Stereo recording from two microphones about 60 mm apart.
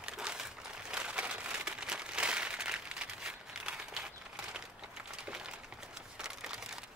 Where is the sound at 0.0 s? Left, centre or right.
Centre.